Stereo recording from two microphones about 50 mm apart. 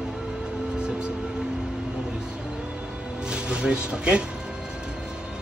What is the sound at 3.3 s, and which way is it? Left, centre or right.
Speech, centre.